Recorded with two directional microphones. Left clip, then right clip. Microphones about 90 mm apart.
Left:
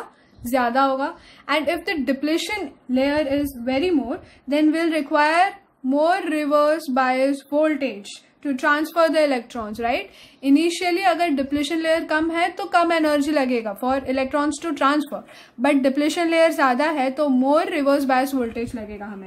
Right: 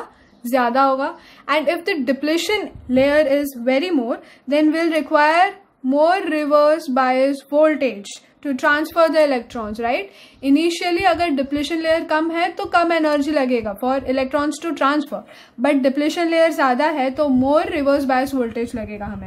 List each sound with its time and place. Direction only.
0.5 s a woman's voice: 20° right (ahead or behind)
2.3 s a woman's voice: 35° right (ahead or behind)
4.5 s a woman's voice: 25° right (ahead or behind); by 10.0 s 10° right (ahead or behind)
10.4 s a woman's voice: 20° right (ahead or behind); by 18.6 s centre (ahead or behind)